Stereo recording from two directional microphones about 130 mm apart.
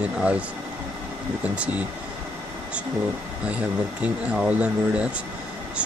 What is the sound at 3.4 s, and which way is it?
Speech, 10° right (ahead or behind).